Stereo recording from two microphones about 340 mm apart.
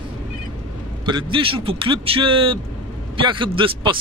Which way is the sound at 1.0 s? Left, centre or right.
Centre.